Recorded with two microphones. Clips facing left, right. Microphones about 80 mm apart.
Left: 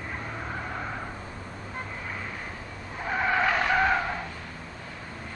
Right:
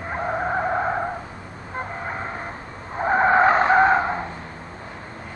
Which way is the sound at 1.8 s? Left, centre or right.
Right.